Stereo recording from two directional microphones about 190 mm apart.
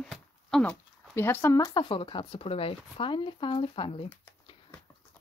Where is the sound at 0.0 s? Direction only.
Centre (ahead or behind); by 4.1 s 30° left (ahead or behind).